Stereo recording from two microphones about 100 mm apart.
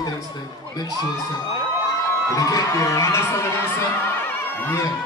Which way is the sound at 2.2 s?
35° left (ahead or behind).